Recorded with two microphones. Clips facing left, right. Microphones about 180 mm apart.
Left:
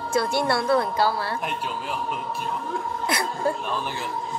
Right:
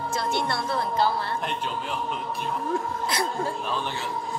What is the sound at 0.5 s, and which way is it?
Speech, 65° left (ahead or behind).